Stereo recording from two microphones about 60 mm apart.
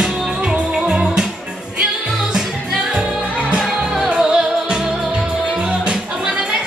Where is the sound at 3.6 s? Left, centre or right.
Centre.